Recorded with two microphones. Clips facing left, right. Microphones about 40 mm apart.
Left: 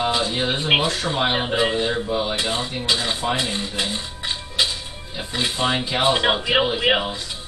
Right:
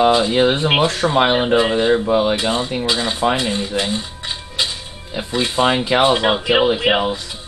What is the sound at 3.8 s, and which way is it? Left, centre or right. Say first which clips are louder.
Music: right 4 dB; centre.